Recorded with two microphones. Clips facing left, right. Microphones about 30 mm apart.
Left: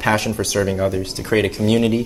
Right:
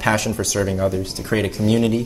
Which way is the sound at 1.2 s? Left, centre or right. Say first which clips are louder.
Left 3 dB; left.